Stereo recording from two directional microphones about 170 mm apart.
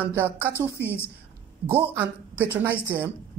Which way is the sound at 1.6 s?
10° right (ahead or behind).